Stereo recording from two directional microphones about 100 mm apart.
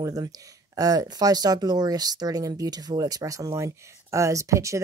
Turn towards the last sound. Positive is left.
turn(degrees=-30)  # may be behind; listen again after turning